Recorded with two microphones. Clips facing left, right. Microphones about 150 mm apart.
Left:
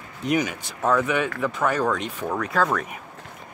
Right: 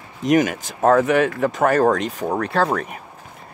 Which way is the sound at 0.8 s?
50° right (ahead or behind).